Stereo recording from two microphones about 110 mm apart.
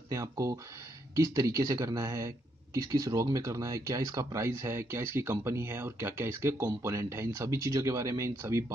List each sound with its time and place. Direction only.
0.1 s speech: 30° right (ahead or behind)